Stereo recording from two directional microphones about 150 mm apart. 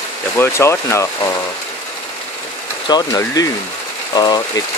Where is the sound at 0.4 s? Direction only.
20° left (ahead or behind).